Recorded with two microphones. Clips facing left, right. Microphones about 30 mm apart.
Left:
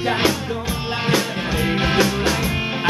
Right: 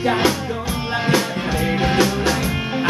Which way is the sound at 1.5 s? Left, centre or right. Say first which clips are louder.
Even; centre.